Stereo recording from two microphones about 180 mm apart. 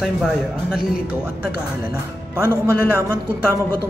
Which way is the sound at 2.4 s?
15° right (ahead or behind).